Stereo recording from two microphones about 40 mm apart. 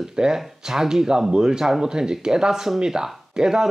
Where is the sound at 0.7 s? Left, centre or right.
Centre.